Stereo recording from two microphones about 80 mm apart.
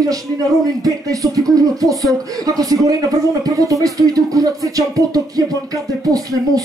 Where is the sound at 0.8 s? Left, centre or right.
Right.